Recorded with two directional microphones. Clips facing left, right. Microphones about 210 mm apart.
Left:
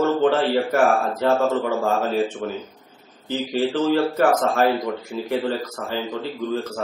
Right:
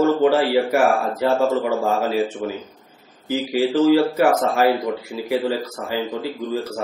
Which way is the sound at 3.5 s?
10° right (ahead or behind).